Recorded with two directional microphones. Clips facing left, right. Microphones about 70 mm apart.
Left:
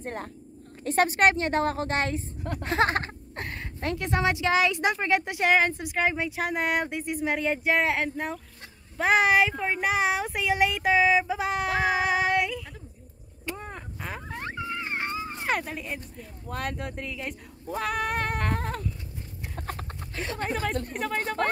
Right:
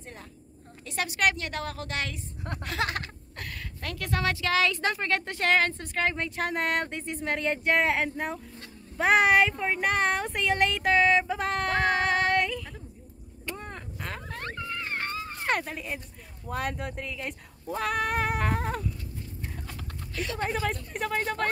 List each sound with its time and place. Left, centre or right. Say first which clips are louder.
0.0 s a woman's voice: left 10 dB; left; by 12.8 s centre
13.5 s a sound: left 2 dB; centre
15.4 s speech: right 1 dB; centre
19.6 s chicken: left 5 dB; left
20.4 s speech: left 2 dB; centre